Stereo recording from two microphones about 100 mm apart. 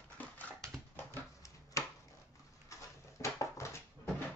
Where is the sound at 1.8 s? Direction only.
35° left (ahead or behind).